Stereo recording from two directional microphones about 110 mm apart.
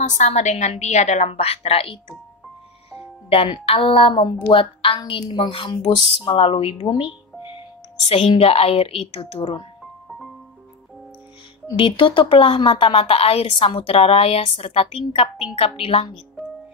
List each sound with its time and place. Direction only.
0.0 s a woman's voice: 90° left; by 2.0 s 60° left (ahead or behind)
3.3 s a woman's voice: 55° left (ahead or behind)
8.3 s speech: 60° left (ahead or behind)
10.0 s music: centre (ahead or behind)
11.7 s speech: 50° left (ahead or behind)